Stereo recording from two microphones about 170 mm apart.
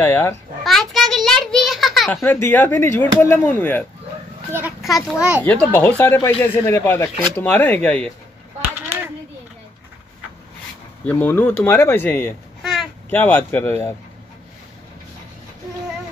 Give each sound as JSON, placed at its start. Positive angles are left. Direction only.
{"t": 0.0, "sound": "speech", "side_deg": 15}
{"t": 0.7, "sound": "a sound", "side_deg": 0}
{"t": 2.2, "sound": "speech", "side_deg": 10}
{"t": 4.5, "sound": "children playing", "side_deg": -10}
{"t": 4.8, "sound": "a child's voice", "side_deg": 0}
{"t": 5.4, "sound": "speech", "side_deg": 10}
{"t": 6.5, "sound": "speech", "side_deg": 25}
{"t": 6.8, "sound": "speech", "side_deg": 15}
{"t": 11.1, "sound": "speech", "side_deg": 10}